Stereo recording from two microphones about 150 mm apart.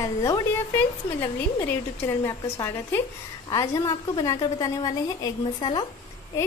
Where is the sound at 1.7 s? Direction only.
20° left (ahead or behind).